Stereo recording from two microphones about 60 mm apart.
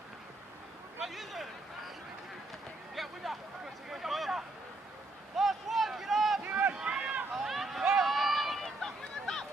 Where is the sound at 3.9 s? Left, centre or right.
Centre.